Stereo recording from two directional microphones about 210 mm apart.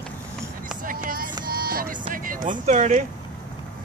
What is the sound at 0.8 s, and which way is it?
Vehicle, 40° right (ahead or behind).